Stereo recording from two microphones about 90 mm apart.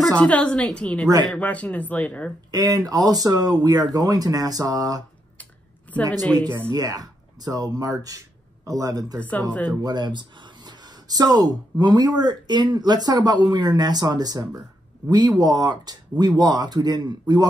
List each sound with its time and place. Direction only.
0.2 s speech: 15° left (ahead or behind)
1.0 s speech: 45° right (ahead or behind)
1.3 s speech: 15° left (ahead or behind)
2.5 s speech: 45° right (ahead or behind)
5.4 s a sound: 15° left (ahead or behind)
6.7 s a man's voice: 45° right (ahead or behind)